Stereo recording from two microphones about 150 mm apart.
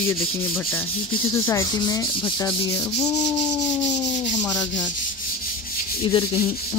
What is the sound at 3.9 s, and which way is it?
Rub, 50° left (ahead or behind).